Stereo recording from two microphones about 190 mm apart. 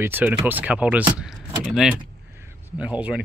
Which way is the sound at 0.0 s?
10° right (ahead or behind).